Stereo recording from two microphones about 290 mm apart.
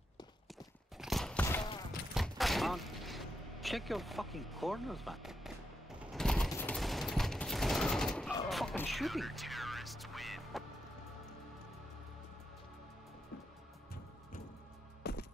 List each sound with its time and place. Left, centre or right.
0.9 s a sound: centre
6.1 s fusillade: centre
8.5 s music: centre
15.0 s music: left